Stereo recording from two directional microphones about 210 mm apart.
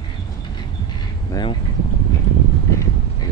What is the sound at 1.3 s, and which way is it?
Speech, 20° left (ahead or behind).